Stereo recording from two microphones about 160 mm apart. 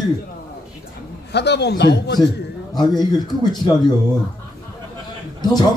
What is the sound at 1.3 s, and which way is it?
Speech, 90° left.